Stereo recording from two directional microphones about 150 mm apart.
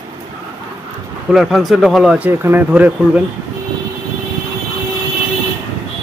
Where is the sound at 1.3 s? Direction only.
Centre (ahead or behind).